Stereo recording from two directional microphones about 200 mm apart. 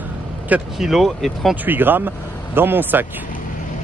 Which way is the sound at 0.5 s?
Centre (ahead or behind).